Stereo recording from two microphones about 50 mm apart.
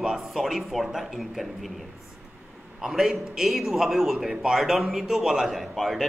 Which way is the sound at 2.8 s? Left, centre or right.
Centre.